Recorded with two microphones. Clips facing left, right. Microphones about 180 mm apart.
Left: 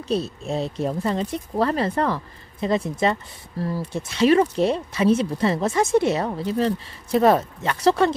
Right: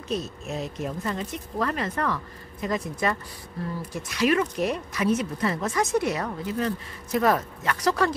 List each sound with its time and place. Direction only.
0.1 s speech: 30° left (ahead or behind)